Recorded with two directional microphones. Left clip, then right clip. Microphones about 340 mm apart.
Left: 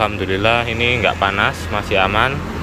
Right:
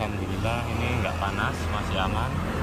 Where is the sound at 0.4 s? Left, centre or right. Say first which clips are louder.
Left 14 dB; left.